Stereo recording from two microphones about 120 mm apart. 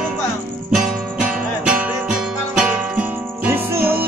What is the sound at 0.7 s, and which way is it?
Music, 5° right (ahead or behind).